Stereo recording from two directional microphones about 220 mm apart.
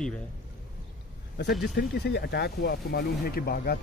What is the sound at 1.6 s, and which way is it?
Speech, 45° left (ahead or behind).